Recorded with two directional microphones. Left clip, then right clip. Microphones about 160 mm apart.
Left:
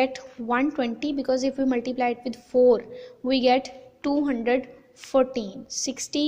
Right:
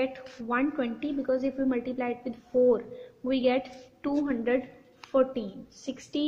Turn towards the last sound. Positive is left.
turn(degrees=20)  # may be behind; listen again after turning